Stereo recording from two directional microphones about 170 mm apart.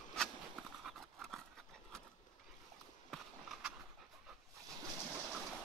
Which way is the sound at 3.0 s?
Centre (ahead or behind).